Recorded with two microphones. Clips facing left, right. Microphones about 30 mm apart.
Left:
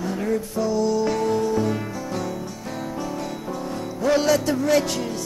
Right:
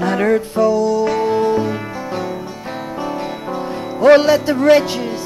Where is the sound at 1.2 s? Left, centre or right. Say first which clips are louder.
Right 6 dB; right.